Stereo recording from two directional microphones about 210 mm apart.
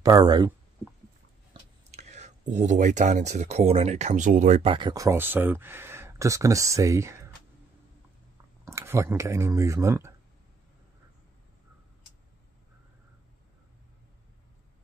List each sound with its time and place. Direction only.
0.0 s speech: 20° right (ahead or behind)
1.9 s speech: 30° right (ahead or behind)
4.7 s speech: 20° right (ahead or behind)
8.6 s speech: 15° right (ahead or behind)